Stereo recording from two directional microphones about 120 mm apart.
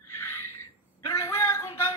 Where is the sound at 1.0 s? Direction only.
30° left (ahead or behind).